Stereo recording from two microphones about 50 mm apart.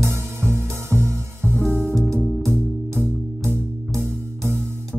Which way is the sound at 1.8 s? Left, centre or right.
Centre.